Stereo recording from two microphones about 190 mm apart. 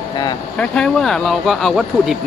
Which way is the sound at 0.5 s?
5° left (ahead or behind).